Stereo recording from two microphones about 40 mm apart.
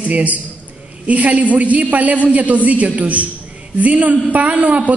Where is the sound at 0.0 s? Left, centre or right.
Right.